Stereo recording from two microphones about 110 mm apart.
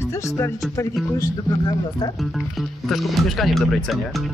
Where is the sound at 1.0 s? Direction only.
Centre (ahead or behind).